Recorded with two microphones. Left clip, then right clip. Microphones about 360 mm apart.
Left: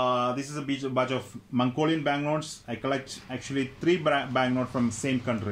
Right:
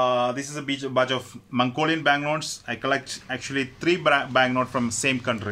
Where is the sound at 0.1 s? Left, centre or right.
Right.